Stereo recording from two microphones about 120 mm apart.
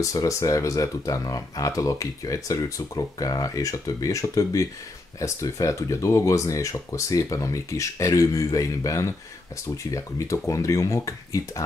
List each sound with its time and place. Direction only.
0.0 s speech: 25° left (ahead or behind)